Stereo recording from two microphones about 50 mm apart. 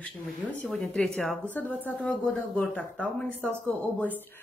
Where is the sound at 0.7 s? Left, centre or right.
Centre.